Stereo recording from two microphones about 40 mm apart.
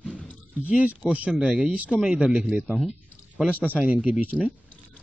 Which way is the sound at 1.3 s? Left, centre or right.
Right.